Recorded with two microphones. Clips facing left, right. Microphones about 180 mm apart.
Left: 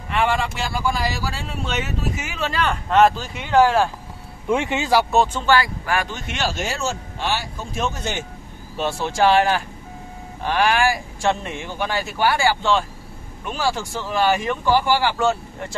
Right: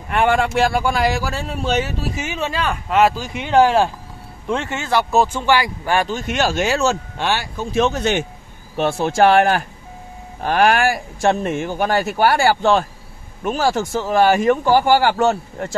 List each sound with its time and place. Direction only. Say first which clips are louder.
0.1 s speech: right 5 dB; 50° right (ahead or behind); by 2.5 s 25° right (ahead or behind)
2.6 s speech: left 1 dB; 5° right (ahead or behind); by 3.9 s 20° right (ahead or behind)
4.5 s speech: left 2 dB; 15° left (ahead or behind)
5.1 s speech: right 1 dB; 10° right (ahead or behind)
5.9 s speech: right 5 dB; 30° right (ahead or behind)
6.2 s speech: right 6 dB; 45° right (ahead or behind)
6.6 s speech: right 7 dB; 80° right
8.7 s speech: right 5 dB; 50° right (ahead or behind)